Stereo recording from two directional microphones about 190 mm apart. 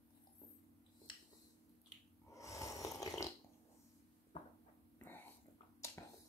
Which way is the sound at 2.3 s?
15° left (ahead or behind).